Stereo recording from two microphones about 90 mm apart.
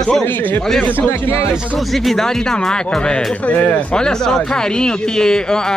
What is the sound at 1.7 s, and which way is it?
Speech, centre (ahead or behind).